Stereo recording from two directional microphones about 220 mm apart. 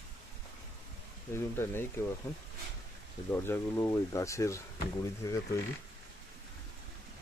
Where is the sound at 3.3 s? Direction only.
10° left (ahead or behind).